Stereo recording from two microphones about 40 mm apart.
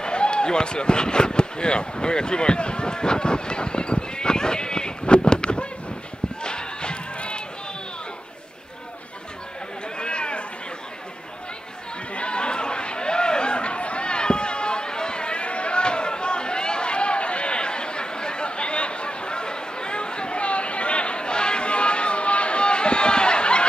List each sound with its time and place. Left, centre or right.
0.0 s speech: left
6.4 s crowd: left
9.9 s a sound: left
12.2 s chatter: left